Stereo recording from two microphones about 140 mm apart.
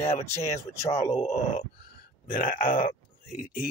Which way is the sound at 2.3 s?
75° left (ahead or behind).